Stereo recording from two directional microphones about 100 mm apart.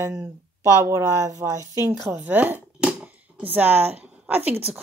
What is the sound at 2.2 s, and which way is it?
Speech, 20° right (ahead or behind).